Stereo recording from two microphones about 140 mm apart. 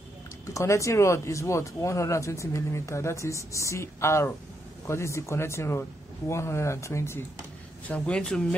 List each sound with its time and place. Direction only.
0.5 s speech: 20° left (ahead or behind)
7.9 s speech: 5° left (ahead or behind)